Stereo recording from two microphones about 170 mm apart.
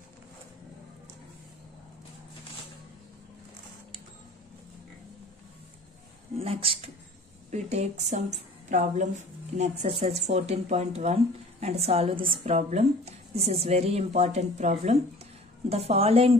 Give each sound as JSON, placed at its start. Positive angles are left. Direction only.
{"t": 6.3, "sound": "a woman's voice", "side_deg": -35}